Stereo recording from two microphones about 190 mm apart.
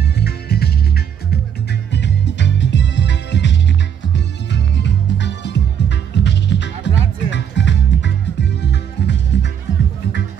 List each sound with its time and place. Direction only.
0.0 s music: 55° left (ahead or behind)
1.9 s music: 65° left (ahead or behind)